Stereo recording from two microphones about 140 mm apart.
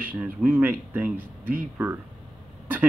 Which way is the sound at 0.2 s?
10° right (ahead or behind).